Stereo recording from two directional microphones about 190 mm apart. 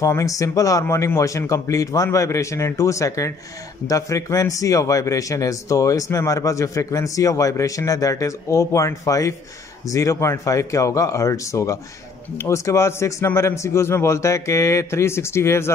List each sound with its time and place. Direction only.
0.0 s a man's voice: 15° left (ahead or behind)